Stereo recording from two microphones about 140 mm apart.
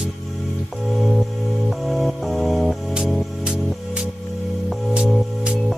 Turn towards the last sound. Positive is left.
turn(degrees=-5)  # may be behind; listen again after turning